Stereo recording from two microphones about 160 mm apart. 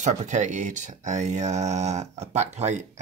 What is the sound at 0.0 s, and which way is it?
Speech, 50° right (ahead or behind).